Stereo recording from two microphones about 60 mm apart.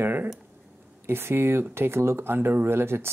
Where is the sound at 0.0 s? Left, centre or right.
Right.